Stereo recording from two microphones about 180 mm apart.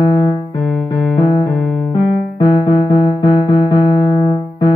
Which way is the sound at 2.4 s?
25° left (ahead or behind).